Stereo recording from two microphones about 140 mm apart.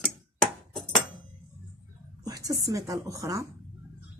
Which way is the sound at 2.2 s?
25° right (ahead or behind).